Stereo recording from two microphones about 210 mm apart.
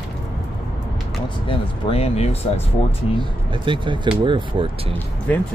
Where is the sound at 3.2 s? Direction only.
25° right (ahead or behind).